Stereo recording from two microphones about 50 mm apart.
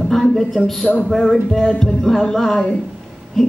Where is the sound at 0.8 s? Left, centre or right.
Left.